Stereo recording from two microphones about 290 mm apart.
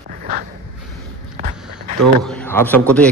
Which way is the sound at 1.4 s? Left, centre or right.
Right.